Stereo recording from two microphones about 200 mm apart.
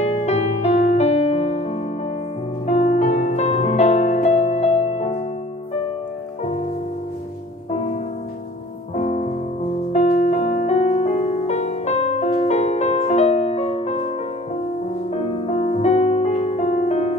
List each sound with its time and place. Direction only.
0.0 s music: 35° left (ahead or behind)
7.7 s music: 35° left (ahead or behind)
15.1 s music: 30° left (ahead or behind)